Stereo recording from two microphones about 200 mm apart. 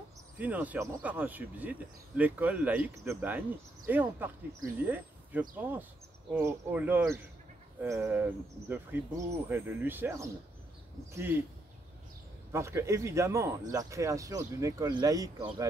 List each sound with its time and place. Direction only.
0.4 s speech: 10° right (ahead or behind)
12.5 s speech: 15° right (ahead or behind)